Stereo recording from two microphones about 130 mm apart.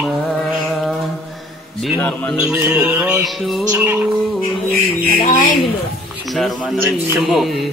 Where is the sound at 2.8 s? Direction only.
10° right (ahead or behind).